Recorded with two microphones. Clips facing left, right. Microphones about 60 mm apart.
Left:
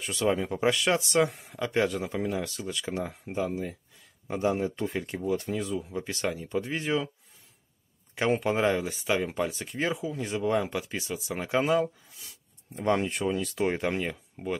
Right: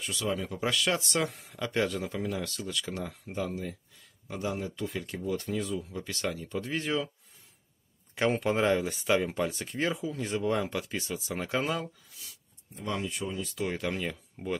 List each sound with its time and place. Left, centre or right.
0.1 s speech: left; by 3.7 s centre
4.3 s speech: left; by 7.1 s centre
8.1 s speech: centre
12.7 s speech: left
13.6 s speech: left